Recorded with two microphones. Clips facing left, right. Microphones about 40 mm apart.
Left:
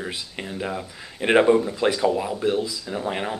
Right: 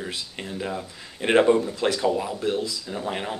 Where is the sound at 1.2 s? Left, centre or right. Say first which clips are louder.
Left 1 dB; centre.